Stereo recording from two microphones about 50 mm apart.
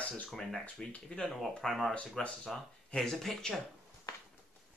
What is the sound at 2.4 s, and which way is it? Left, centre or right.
Speech, centre.